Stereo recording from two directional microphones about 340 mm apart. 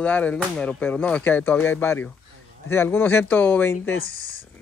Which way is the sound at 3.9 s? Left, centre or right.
Left.